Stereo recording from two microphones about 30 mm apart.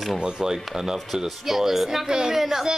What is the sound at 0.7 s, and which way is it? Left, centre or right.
Speech, centre.